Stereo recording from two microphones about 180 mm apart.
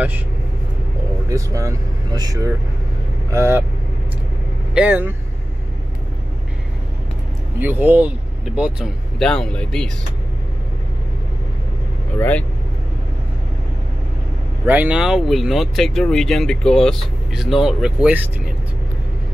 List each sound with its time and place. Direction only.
1.3 s speech: 15° right (ahead or behind)
4.7 s speech: 10° right (ahead or behind)
7.5 s speech: 10° right (ahead or behind)
12.2 s speech: 10° left (ahead or behind)
14.7 s speech: 5° right (ahead or behind)